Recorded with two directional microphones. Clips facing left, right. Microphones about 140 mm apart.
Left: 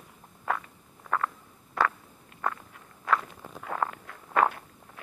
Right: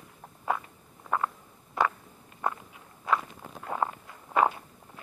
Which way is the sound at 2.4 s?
20° right (ahead or behind).